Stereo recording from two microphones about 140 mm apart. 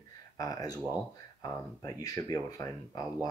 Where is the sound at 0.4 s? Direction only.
25° left (ahead or behind).